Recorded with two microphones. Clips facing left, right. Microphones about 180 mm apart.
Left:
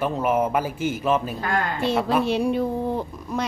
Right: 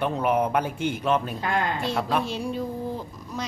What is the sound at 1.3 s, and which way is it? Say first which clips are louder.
Speech: left 1 dB; 20° right (ahead or behind).